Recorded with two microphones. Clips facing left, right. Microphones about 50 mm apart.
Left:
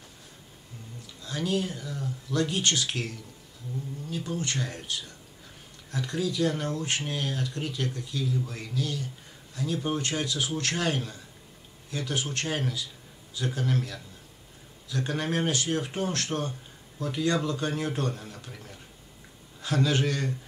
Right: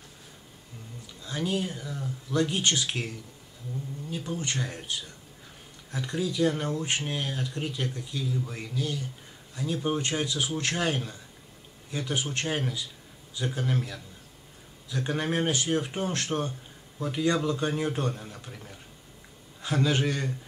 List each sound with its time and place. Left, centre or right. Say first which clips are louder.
1.2 s speech: left 1 dB; centre
4.3 s speech: even; centre
8.2 s speech: left 1 dB; centre